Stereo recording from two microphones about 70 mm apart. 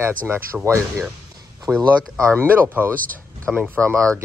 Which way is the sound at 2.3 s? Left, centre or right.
Right.